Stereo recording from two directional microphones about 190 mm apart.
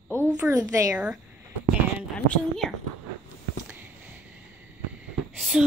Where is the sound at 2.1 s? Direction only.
5° left (ahead or behind).